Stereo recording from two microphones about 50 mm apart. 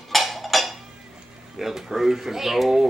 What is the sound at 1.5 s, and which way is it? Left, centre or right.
A woman's voice, centre.